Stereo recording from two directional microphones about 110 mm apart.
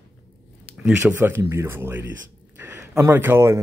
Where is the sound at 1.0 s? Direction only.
20° right (ahead or behind).